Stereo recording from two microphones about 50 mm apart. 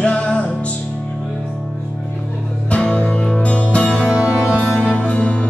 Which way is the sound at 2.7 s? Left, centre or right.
Left.